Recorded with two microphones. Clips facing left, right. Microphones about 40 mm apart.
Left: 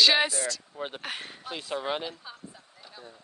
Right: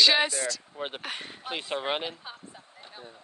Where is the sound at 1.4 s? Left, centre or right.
Right.